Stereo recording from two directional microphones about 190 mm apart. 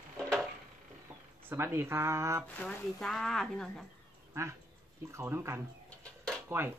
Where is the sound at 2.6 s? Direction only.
5° left (ahead or behind).